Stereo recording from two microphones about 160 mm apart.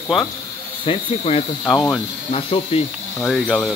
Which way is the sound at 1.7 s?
Centre (ahead or behind).